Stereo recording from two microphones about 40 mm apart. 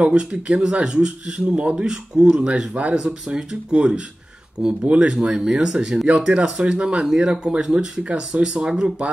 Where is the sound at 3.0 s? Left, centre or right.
Centre.